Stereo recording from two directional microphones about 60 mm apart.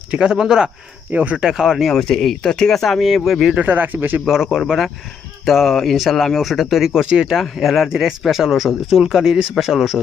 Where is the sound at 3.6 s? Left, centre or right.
Right.